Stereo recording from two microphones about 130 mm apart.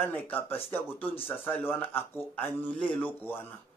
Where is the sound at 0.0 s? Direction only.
15° left (ahead or behind).